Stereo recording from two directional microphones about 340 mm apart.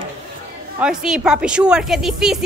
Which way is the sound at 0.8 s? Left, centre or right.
Centre.